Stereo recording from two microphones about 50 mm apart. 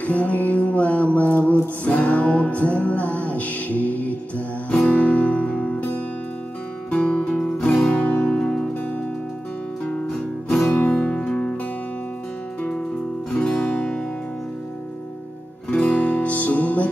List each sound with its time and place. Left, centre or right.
0.0 s music: left
6.9 s music: left
7.3 s music: centre
7.9 s music: left
8.4 s music: centre
10.0 s music: centre
10.8 s music: centre
13.3 s guitar: centre
15.7 s music: left